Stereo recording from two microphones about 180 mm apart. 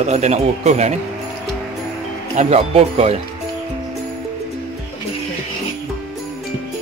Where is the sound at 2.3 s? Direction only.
35° right (ahead or behind).